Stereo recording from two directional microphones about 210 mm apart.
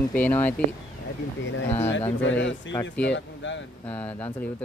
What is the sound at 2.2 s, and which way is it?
Speech, 60° left (ahead or behind).